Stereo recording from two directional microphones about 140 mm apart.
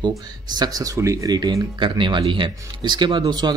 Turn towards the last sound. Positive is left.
turn(degrees=-30)  # may be behind; listen again after turning